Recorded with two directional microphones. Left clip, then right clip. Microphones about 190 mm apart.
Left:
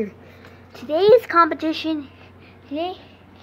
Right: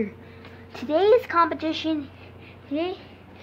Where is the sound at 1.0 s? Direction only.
15° left (ahead or behind).